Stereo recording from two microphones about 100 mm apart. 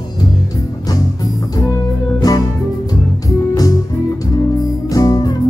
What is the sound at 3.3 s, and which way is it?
Music, 35° left (ahead or behind).